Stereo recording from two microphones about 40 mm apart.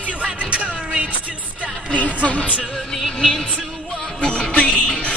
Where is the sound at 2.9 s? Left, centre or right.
Centre.